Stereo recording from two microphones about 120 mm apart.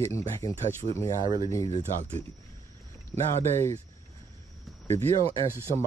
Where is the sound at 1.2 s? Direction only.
35° right (ahead or behind).